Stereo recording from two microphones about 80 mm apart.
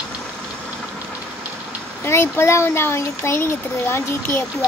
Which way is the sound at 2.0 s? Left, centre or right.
Left.